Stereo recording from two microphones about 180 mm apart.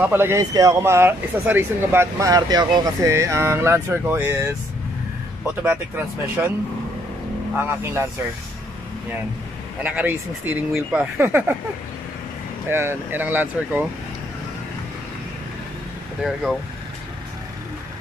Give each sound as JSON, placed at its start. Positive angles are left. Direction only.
{"t": 0.0, "sound": "speech", "side_deg": -10}
{"t": 5.6, "sound": "speech", "side_deg": -10}
{"t": 7.5, "sound": "speech", "side_deg": -15}
{"t": 9.8, "sound": "speech", "side_deg": -10}
{"t": 12.6, "sound": "speech", "side_deg": -10}